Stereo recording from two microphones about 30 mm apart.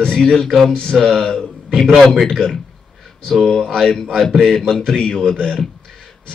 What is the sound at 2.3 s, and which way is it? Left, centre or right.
Speech, centre.